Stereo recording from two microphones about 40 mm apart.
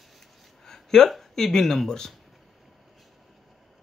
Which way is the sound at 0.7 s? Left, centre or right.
Centre.